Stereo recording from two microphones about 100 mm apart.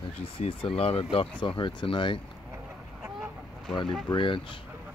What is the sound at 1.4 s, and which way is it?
Speech, 50° left (ahead or behind).